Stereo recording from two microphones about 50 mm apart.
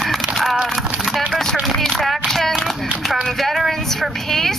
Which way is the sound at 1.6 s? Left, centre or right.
Centre.